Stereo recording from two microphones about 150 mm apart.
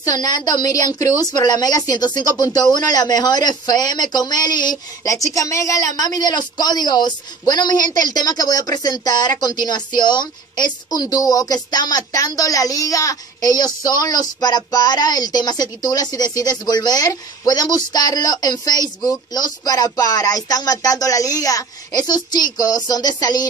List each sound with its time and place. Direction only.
0.2 s a woman's voice: 25° left (ahead or behind)